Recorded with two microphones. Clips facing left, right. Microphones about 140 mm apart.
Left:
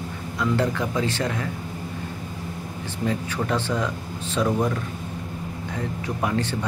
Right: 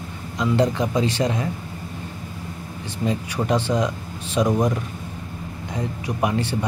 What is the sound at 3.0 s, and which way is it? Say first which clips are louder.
Speech: right 3 dB; 15° right (ahead or behind).